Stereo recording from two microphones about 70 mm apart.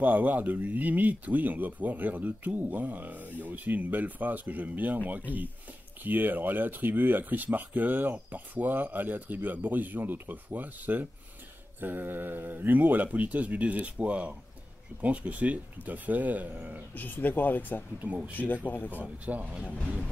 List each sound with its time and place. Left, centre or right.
0.0 s speech: right
16.9 s speech: left
18.0 s speech: right
18.3 s speech: left
18.9 s speech: right